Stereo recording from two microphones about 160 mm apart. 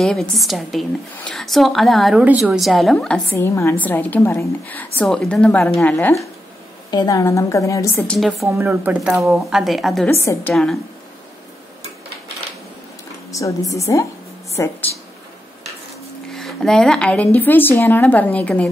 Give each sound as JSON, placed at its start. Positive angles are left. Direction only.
{"t": 0.0, "sound": "speech", "side_deg": 0}
{"t": 2.2, "sound": "speech", "side_deg": -10}
{"t": 2.6, "sound": "speech", "side_deg": 0}
{"t": 3.3, "sound": "a woman's voice", "side_deg": 15}
{"t": 6.9, "sound": "a woman's voice", "side_deg": 25}
{"t": 8.1, "sound": "speech", "side_deg": 0}
{"t": 8.5, "sound": "speech", "side_deg": -15}
{"t": 10.0, "sound": "a woman's voice", "side_deg": 15}
{"t": 10.5, "sound": "speech", "side_deg": 0}
{"t": 13.3, "sound": "a woman's voice", "side_deg": 20}
{"t": 16.3, "sound": "a woman's voice", "side_deg": 0}